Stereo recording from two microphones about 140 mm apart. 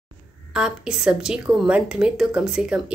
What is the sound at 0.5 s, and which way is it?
Speech, 5° right (ahead or behind).